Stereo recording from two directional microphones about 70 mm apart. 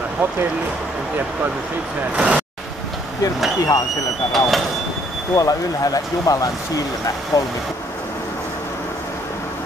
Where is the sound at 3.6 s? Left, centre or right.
Left.